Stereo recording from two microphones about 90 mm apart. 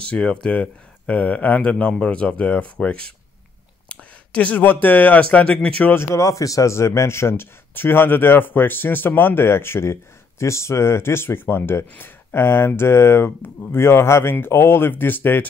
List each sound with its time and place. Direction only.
0.1 s speech: 10° left (ahead or behind)
5.9 s speech: 35° left (ahead or behind)